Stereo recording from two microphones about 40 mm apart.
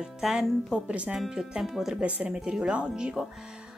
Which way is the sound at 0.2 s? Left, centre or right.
Centre.